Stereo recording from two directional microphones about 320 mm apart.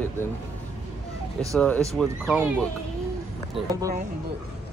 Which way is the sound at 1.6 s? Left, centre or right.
Centre.